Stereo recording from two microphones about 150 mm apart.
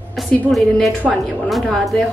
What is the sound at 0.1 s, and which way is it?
A woman's voice, centre (ahead or behind).